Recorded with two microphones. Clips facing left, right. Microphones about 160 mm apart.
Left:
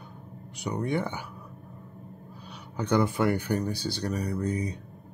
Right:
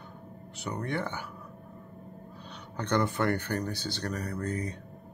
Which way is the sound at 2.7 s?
10° left (ahead or behind).